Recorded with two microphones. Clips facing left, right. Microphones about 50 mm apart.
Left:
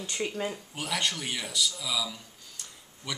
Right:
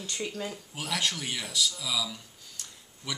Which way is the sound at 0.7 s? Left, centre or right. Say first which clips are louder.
Right 1 dB; centre.